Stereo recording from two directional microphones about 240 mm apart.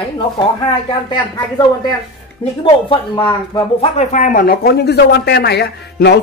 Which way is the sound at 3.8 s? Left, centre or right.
Left.